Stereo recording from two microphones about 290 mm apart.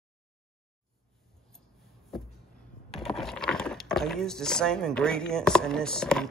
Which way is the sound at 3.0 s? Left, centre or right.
Centre.